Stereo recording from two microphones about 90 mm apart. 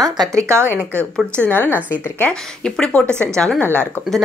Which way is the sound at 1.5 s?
20° left (ahead or behind).